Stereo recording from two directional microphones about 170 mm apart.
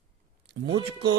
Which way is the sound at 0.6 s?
90° right.